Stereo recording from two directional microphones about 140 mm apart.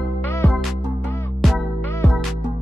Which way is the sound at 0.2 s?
20° left (ahead or behind).